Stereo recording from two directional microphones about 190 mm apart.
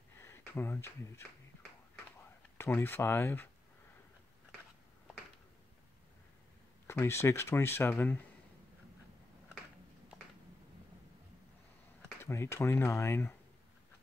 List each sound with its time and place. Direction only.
0.2 s speech: 15° left (ahead or behind)
2.5 s speech: 10° left (ahead or behind)
6.9 s speech: 15° left (ahead or behind)
12.0 s speech: 15° left (ahead or behind)